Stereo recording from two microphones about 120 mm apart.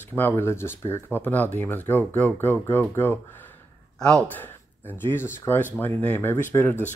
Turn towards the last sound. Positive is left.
turn(degrees=20)  # may be behind; listen again after turning